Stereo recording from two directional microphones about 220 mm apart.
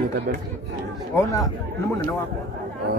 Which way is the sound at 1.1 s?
15° left (ahead or behind).